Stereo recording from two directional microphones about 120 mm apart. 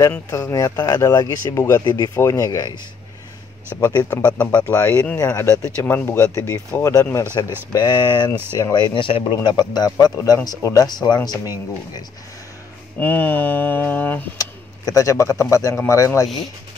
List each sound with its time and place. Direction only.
0.1 s speech: 25° left (ahead or behind)
4.1 s mantra: 10° left (ahead or behind)
5.9 s speech: 20° left (ahead or behind)
13.0 s mantra: 15° left (ahead or behind)
14.4 s speech: 30° left (ahead or behind)